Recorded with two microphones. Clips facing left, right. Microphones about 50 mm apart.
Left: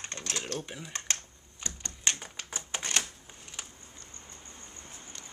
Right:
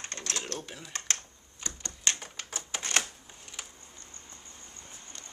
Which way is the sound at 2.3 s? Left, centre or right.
Left.